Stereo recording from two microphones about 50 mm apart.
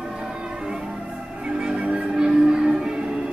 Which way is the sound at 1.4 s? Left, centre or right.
Centre.